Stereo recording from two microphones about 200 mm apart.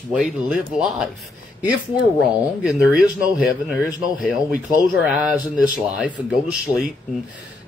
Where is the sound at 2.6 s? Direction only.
5° right (ahead or behind).